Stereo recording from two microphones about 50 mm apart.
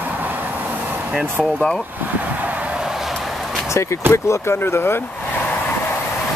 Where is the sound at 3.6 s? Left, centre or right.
Left.